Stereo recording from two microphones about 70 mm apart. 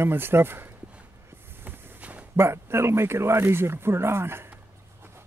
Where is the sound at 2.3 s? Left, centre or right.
Right.